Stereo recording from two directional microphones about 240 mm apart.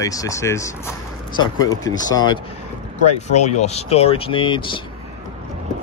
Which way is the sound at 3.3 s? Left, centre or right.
Left.